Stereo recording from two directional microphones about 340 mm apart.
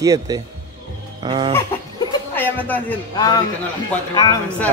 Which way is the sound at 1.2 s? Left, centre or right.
Centre.